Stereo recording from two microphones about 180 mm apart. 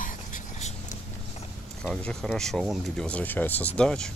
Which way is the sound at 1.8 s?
5° left (ahead or behind).